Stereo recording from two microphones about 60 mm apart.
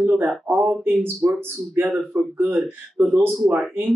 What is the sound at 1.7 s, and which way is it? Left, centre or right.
Speech, right.